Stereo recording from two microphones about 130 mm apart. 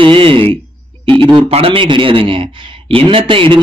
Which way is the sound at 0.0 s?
40° right (ahead or behind).